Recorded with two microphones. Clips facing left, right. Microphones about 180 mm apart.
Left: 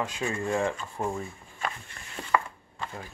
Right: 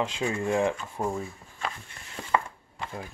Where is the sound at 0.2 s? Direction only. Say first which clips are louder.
Right 2 dB; 10° right (ahead or behind).